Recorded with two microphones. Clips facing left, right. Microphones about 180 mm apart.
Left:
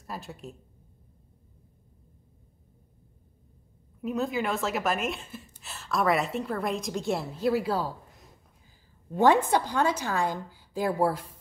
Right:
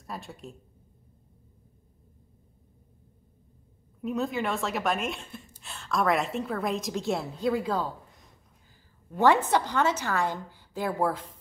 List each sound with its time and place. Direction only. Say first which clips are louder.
0.0 s a woman's voice: left 1 dB; centre (ahead or behind)
4.0 s a woman's voice: even; centre (ahead or behind)
9.1 s a woman's voice: left 1 dB; 15° left (ahead or behind)